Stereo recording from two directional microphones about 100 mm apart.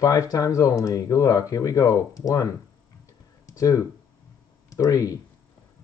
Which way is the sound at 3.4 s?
35° left (ahead or behind).